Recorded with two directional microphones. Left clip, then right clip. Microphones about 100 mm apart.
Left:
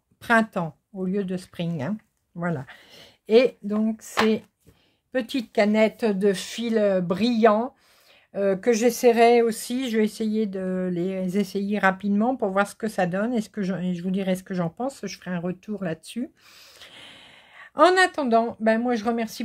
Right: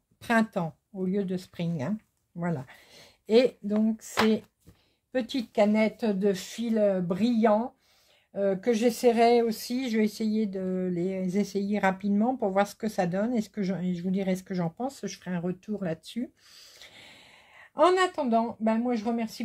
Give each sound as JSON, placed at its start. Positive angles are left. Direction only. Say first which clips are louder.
{"t": 0.2, "sound": "speech", "louder": "left 5 dB", "side_deg": 30}
{"t": 5.1, "sound": "speech", "louder": "left 4 dB", "side_deg": 40}
{"t": 9.5, "sound": "speech", "louder": "left 4 dB", "side_deg": 50}
{"t": 13.7, "sound": "speech", "louder": "left 3 dB", "side_deg": 40}
{"t": 16.0, "sound": "a sound", "louder": "left 3 dB", "side_deg": 45}
{"t": 17.7, "sound": "speech", "louder": "left 5 dB", "side_deg": 70}